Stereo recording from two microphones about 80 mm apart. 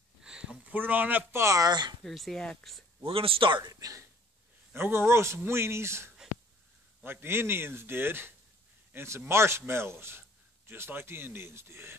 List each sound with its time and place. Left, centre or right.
0.2 s a sound: centre
0.7 s speech: right
1.4 s a man's voice: right
1.7 s speech: right
2.0 s speech: centre
3.1 s speech: right
3.6 s speech: right
4.7 s a man's voice: right